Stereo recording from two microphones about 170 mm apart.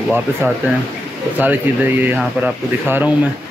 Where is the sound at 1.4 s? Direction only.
10° right (ahead or behind).